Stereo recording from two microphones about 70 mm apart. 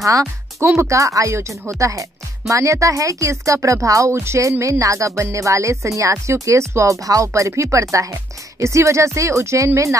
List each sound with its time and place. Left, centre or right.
0.0 s speech: right